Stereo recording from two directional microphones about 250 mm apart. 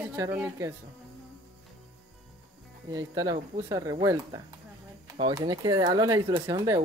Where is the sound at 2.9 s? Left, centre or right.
Centre.